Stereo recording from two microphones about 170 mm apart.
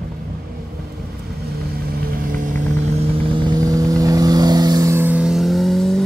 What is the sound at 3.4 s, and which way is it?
Vehicle, 20° right (ahead or behind).